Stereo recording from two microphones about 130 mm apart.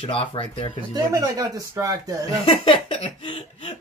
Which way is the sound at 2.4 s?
45° left (ahead or behind).